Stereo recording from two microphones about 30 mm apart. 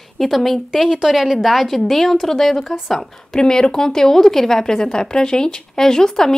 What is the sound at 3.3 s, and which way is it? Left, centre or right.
Speech, left.